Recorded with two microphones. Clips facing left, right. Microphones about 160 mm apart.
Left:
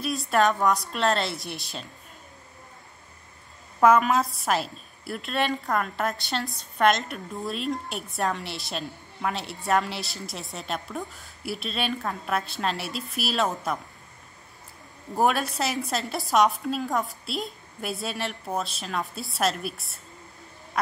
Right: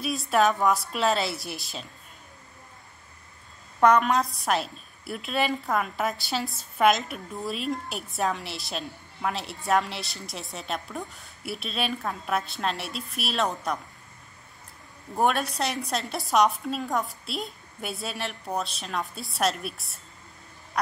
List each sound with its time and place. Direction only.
0.0 s a woman's voice: centre (ahead or behind)
3.8 s a woman's voice: 5° left (ahead or behind)
15.1 s a woman's voice: centre (ahead or behind)
20.7 s duck: centre (ahead or behind)